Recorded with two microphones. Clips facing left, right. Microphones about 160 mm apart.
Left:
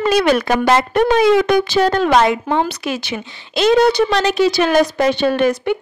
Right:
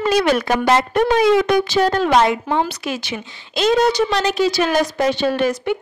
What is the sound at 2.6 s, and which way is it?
A woman's voice, 65° left (ahead or behind).